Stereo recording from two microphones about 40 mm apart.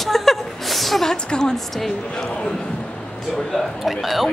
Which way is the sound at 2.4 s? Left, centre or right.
Centre.